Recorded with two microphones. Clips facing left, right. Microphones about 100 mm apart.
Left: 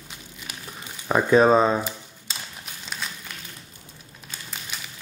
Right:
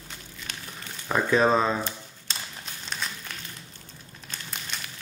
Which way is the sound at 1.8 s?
5° left (ahead or behind).